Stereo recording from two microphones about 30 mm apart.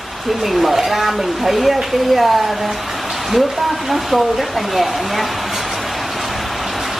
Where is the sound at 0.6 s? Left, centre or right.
Centre.